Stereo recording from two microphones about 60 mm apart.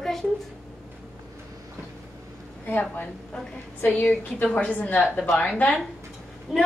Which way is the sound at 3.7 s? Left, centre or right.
Left.